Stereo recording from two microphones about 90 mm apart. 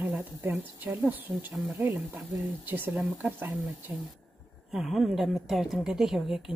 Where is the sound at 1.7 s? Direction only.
15° right (ahead or behind).